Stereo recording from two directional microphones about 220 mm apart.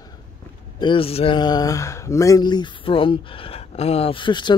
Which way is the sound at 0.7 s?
25° left (ahead or behind).